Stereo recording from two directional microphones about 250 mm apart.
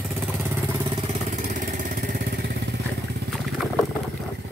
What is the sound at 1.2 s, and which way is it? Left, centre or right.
Vehicle, right.